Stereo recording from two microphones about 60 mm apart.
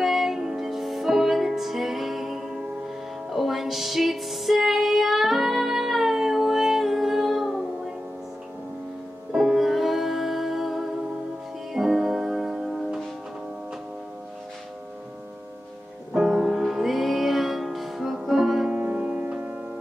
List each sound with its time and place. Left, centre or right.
0.0 s music: centre
9.3 s music: centre
16.2 s music: centre
18.7 s music: right